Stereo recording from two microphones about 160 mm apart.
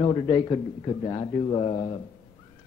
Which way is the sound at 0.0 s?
35° left (ahead or behind).